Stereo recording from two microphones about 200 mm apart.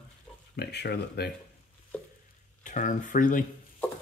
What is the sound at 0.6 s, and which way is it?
Speech, 55° left (ahead or behind).